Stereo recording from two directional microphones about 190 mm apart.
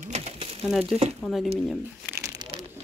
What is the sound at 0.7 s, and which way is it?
Speech, centre (ahead or behind).